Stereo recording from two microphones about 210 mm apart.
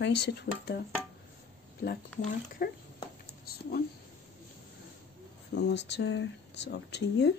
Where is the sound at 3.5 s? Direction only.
45° left (ahead or behind).